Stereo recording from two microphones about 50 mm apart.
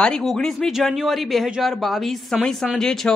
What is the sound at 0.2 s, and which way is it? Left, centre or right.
Speech, centre.